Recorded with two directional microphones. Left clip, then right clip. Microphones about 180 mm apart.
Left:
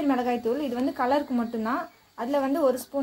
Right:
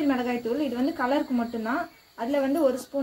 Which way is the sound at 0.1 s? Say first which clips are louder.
Left 2 dB; 50° left (ahead or behind).